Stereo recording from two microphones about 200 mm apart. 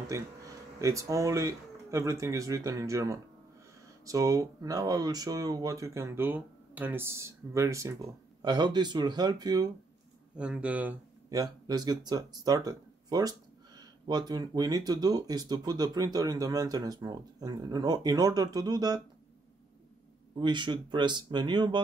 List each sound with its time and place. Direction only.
0.1 s speech: 15° right (ahead or behind)
10.3 s speech: 5° right (ahead or behind)
20.3 s speech: 25° right (ahead or behind)